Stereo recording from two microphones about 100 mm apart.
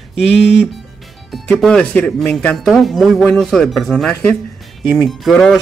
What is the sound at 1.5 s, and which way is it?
Speech, 5° left (ahead or behind).